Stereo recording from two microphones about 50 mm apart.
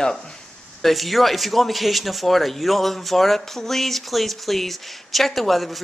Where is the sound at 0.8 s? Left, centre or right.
Centre.